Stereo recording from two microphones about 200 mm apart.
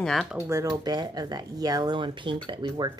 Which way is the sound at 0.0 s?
Centre (ahead or behind).